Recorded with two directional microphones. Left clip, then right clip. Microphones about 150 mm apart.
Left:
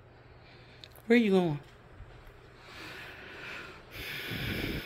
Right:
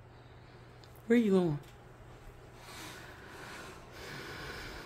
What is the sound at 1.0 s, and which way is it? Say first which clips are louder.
Speech: left 3 dB; 5° left (ahead or behind).